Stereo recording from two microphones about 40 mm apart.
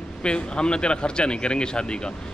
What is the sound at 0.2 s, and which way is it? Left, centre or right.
A man's voice, left.